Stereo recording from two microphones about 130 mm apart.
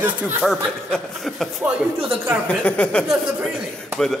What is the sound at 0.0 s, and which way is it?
A woman's voice, 10° right (ahead or behind).